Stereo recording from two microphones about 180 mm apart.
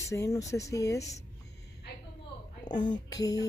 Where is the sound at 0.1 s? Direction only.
15° left (ahead or behind).